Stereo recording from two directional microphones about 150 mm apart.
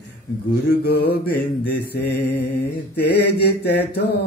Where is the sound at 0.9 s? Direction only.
90° left.